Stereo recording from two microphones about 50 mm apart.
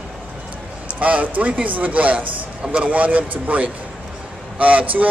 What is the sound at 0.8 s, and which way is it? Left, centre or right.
A man's voice, right.